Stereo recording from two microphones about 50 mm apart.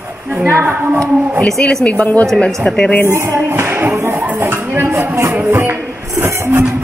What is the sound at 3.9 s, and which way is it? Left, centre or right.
Speech, right.